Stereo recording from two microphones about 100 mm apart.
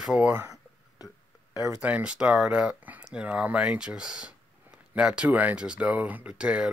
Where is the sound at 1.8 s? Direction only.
15° right (ahead or behind).